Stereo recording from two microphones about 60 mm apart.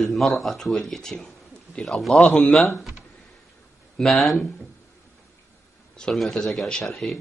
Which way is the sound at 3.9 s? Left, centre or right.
Centre.